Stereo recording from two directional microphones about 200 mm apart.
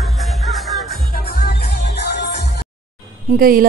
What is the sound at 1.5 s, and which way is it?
Music, 55° left (ahead or behind).